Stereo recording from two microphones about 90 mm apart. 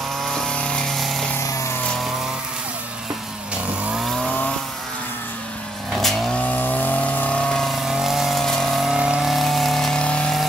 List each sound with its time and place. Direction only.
0.3 s vehicle: 10° left (ahead or behind)
3.9 s vehicle: centre (ahead or behind)
4.3 s vehicle: 10° left (ahead or behind)
5.9 s vehicle: centre (ahead or behind)
6.4 s chainsaw: 15° left (ahead or behind); by 8.9 s centre (ahead or behind)
8.9 s power tool: 10° right (ahead or behind); by 10.4 s 10° left (ahead or behind)